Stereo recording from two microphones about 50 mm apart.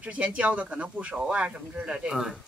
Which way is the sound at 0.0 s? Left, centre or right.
Right.